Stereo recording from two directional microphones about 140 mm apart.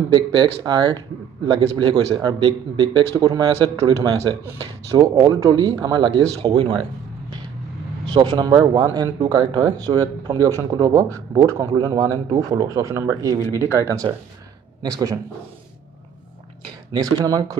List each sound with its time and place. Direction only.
0.1 s a man's voice: 30° right (ahead or behind)
8.1 s a man's voice: 35° right (ahead or behind)
13.4 s speech: 25° left (ahead or behind)
13.7 s speech: 20° right (ahead or behind)
16.9 s speech: 25° right (ahead or behind)